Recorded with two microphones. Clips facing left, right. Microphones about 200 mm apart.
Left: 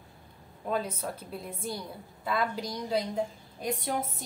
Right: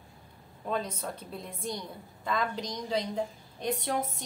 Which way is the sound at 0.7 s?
5° left (ahead or behind).